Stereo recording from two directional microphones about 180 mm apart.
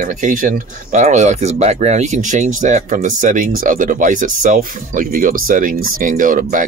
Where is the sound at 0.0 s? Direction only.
45° right (ahead or behind).